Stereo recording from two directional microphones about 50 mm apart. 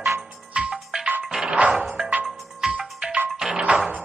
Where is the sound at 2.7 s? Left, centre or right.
Centre.